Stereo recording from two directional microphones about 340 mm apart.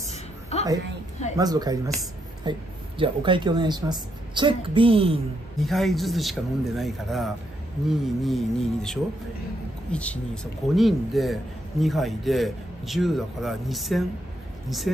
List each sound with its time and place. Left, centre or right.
0.1 s a sound: centre
1.3 s a woman's voice: centre
5.6 s a man's voice: centre